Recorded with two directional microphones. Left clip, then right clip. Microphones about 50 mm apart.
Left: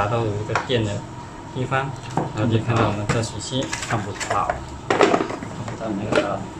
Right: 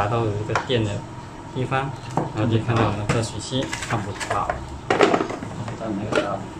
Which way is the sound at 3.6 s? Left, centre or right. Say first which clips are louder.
Even; right.